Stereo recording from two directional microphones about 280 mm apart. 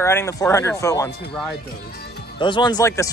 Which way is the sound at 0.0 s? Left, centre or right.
Centre.